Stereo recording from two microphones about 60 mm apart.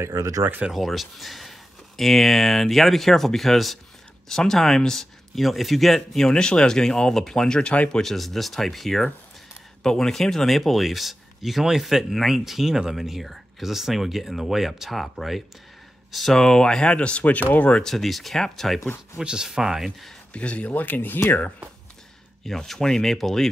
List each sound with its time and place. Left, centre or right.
0.1 s speech: right
0.7 s speech: centre
8.0 s speech: centre; by 17.8 s left
17.8 s speech: centre
19.1 s speech: centre
20.3 s speech: left
22.4 s speech: centre